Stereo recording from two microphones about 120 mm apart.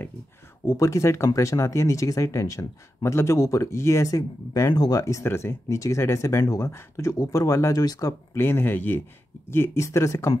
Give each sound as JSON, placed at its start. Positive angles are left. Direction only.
{"t": 0.7, "sound": "speech", "side_deg": 25}
{"t": 8.4, "sound": "speech", "side_deg": 20}